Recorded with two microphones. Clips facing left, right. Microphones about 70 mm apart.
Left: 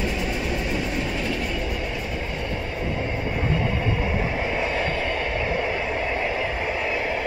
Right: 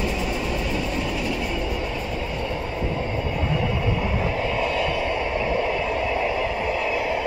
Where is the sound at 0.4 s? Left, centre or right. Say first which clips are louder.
Even; centre.